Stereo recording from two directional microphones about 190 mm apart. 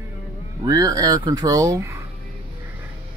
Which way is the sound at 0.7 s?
20° right (ahead or behind).